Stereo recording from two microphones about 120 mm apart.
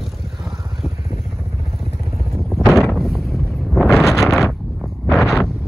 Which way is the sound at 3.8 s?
Centre (ahead or behind).